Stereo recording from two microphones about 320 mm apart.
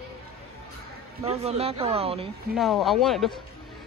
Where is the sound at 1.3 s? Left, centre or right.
Centre.